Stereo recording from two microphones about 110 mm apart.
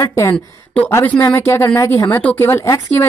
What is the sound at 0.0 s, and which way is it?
Speech, 30° left (ahead or behind).